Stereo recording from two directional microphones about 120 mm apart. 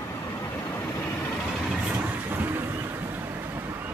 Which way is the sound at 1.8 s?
10° right (ahead or behind).